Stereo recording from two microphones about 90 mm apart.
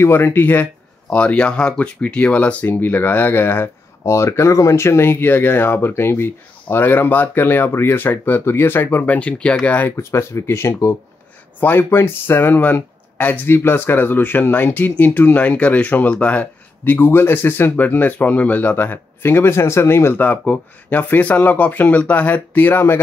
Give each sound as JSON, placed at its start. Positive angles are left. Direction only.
{"t": 0.0, "sound": "speech", "side_deg": 25}
{"t": 1.1, "sound": "speech", "side_deg": 10}